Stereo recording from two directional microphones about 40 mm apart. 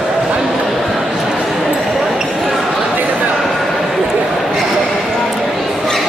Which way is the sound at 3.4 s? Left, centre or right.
Centre.